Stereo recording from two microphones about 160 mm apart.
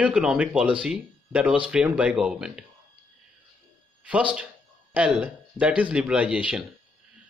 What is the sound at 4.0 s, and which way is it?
A man's voice, 10° right (ahead or behind).